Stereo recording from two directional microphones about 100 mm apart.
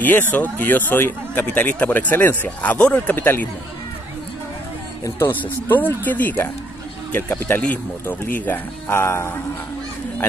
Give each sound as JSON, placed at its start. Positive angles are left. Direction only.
{"t": 0.4, "sound": "speech", "side_deg": 15}
{"t": 5.7, "sound": "speech", "side_deg": 20}